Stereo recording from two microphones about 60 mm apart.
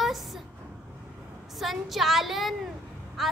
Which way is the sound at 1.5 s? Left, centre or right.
Centre.